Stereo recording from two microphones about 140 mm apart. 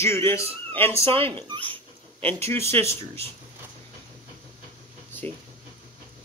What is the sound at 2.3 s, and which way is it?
Speech, 20° left (ahead or behind).